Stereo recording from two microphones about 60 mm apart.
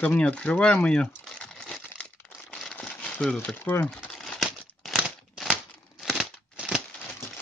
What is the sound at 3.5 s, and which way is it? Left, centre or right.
Speech, left.